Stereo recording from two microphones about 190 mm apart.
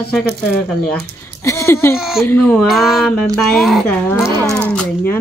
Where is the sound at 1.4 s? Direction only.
15° left (ahead or behind).